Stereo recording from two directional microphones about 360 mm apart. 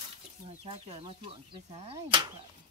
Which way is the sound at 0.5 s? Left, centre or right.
Centre.